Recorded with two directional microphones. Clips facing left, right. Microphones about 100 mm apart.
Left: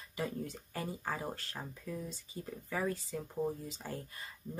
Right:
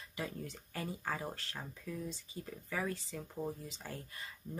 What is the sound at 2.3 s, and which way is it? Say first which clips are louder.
Speech: left 2 dB; 30° left (ahead or behind).